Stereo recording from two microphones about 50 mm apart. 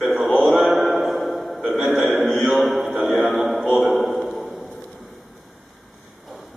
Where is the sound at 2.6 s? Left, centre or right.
Centre.